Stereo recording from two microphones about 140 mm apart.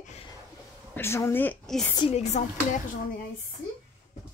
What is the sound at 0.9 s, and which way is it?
Speech, 15° left (ahead or behind).